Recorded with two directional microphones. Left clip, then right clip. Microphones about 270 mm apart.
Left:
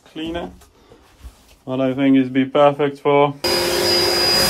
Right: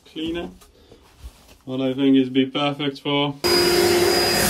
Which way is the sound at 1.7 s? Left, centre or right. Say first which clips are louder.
Left 3 dB; centre.